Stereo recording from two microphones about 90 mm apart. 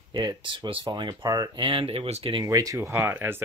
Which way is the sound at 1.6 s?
80° right.